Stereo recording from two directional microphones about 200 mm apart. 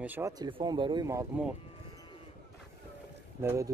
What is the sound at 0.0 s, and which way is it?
Speech, 10° right (ahead or behind).